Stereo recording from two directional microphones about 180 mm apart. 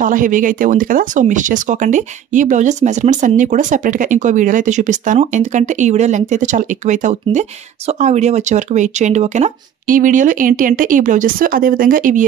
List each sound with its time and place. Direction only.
0.0 s speech: 45° right (ahead or behind)